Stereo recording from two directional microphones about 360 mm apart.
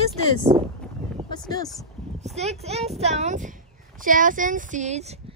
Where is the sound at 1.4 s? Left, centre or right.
Centre.